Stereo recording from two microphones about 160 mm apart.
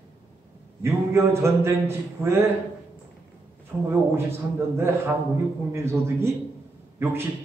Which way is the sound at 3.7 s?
10° right (ahead or behind).